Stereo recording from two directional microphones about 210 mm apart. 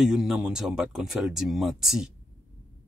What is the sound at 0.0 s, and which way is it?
Speech, centre (ahead or behind).